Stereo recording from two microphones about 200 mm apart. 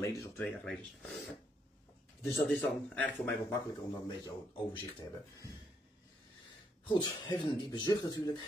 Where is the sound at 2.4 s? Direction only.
5° left (ahead or behind).